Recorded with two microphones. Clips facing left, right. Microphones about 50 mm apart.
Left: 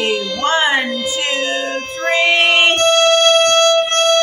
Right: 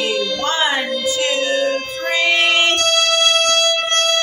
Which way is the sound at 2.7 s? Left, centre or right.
Left.